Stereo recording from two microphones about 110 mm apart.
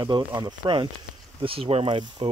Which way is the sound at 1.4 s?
55° right (ahead or behind).